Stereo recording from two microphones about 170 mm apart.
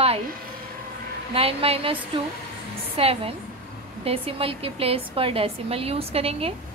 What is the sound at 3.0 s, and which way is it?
Speech, 35° right (ahead or behind).